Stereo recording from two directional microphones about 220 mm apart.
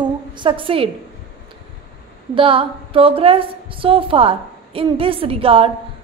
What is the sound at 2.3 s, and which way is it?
A woman's voice, 25° right (ahead or behind).